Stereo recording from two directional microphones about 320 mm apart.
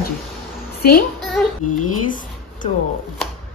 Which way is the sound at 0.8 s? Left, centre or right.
Left.